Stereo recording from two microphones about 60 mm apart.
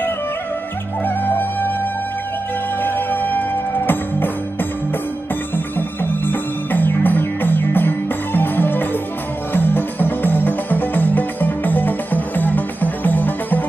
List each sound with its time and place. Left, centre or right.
1.0 s music: left
2.8 s music: left
5.8 s music: left